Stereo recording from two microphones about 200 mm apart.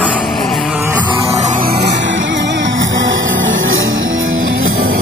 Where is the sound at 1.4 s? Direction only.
40° right (ahead or behind); by 4.6 s 75° right (ahead or behind).